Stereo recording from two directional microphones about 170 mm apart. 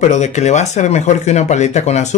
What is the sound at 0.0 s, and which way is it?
Speech, 45° left (ahead or behind).